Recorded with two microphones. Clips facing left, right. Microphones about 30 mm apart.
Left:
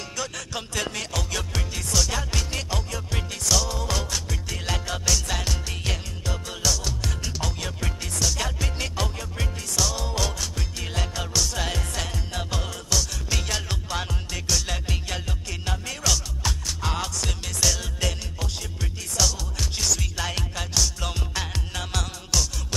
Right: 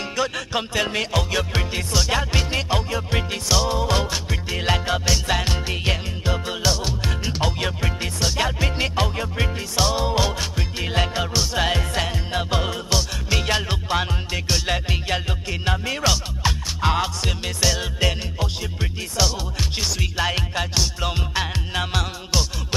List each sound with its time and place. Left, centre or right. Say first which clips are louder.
0.1 s music: right 8 dB; right